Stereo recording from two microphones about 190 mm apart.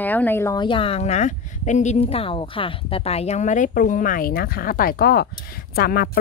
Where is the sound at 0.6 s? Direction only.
30° left (ahead or behind); by 6.1 s 55° left (ahead or behind).